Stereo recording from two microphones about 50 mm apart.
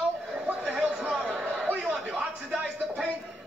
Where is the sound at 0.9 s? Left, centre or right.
Centre.